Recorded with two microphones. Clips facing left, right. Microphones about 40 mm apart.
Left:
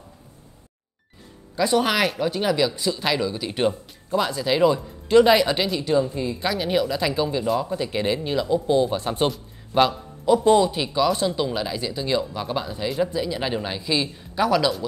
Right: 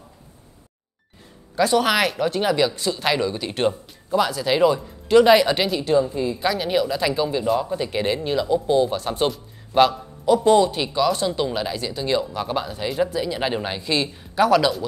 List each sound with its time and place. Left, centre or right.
1.7 s a woman's voice: centre
3.5 s a woman's voice: centre
8.9 s a man's voice: left
9.2 s a man's voice: centre
11.3 s speech: centre
11.7 s a woman's voice: centre